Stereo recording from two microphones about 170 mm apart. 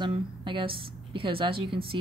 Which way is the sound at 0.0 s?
30° right (ahead or behind).